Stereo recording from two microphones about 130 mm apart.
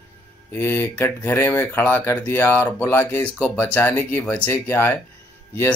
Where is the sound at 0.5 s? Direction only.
20° left (ahead or behind).